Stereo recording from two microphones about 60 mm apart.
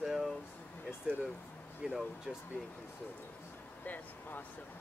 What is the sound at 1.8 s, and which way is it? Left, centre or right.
Speech, centre.